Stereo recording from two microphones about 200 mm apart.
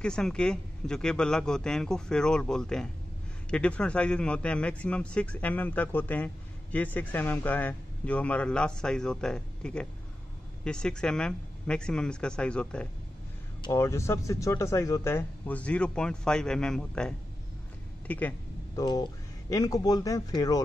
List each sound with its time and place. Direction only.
0.0 s a man's voice: 5° left (ahead or behind)
13.6 s a man's voice: 15° left (ahead or behind)
18.8 s a man's voice: 20° left (ahead or behind)